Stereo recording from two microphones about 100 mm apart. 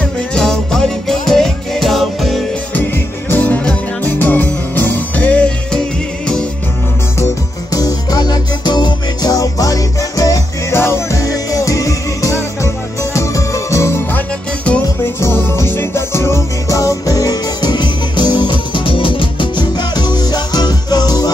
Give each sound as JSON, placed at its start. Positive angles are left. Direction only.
{"t": 0.0, "sound": "music", "side_deg": 5}
{"t": 2.7, "sound": "music", "side_deg": 20}
{"t": 7.7, "sound": "music", "side_deg": 40}